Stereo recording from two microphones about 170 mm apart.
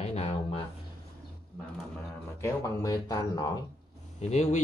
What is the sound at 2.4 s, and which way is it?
Speech, 20° left (ahead or behind).